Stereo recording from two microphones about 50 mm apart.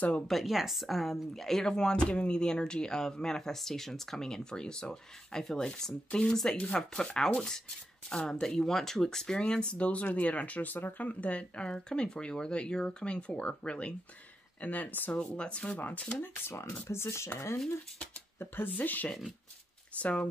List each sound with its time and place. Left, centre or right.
0.3 s a woman's voice: centre; by 15.2 s left
15.3 s speech: left
15.8 s speech: left
16.2 s speech: left
16.8 s speech: left
18.8 s speech: left